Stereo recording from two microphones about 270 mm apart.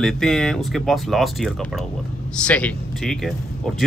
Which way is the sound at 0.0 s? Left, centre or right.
Centre.